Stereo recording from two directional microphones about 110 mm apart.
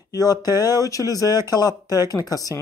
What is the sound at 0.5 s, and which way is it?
Speech, 25° right (ahead or behind).